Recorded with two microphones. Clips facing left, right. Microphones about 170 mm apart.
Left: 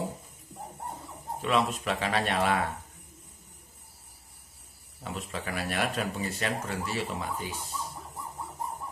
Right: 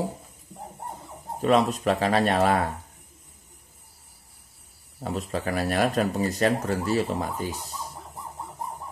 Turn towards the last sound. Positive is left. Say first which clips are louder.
# right 4 dB
turn(degrees=-40)  # may be behind; listen again after turning